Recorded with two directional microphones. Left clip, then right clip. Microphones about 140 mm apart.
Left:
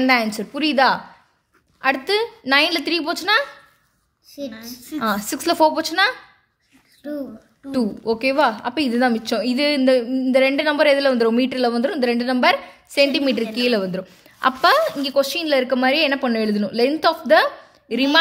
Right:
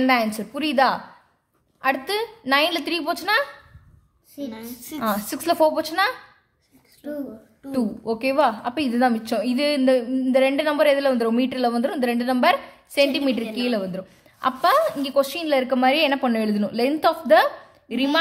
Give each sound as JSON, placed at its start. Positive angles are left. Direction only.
{"t": 0.0, "sound": "a woman's voice", "side_deg": 30}
{"t": 4.6, "sound": "a woman's voice", "side_deg": 35}
{"t": 7.7, "sound": "a woman's voice", "side_deg": 25}